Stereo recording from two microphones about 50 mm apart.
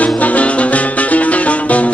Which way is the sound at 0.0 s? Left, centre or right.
Left.